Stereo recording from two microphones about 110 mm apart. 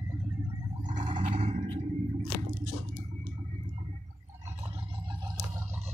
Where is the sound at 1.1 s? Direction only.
50° right (ahead or behind).